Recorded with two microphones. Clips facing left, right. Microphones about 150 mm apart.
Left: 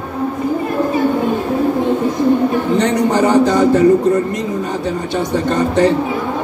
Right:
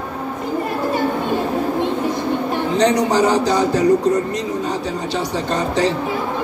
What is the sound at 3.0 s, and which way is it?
Speech, 55° left (ahead or behind).